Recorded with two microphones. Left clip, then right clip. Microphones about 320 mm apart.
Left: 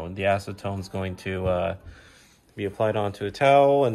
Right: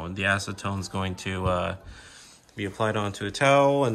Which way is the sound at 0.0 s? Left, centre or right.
Centre.